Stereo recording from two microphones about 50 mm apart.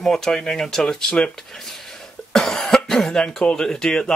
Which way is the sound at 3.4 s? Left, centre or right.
Centre.